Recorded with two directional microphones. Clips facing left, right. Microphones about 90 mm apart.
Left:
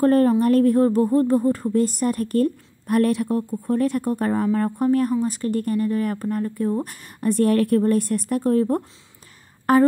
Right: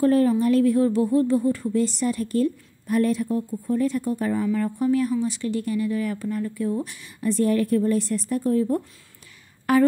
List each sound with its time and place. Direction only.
0.0 s speech: 45° left (ahead or behind)
9.7 s speech: 40° left (ahead or behind)